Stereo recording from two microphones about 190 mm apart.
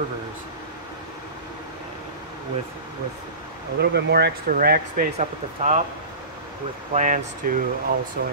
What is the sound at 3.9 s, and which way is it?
Speech, 60° right (ahead or behind).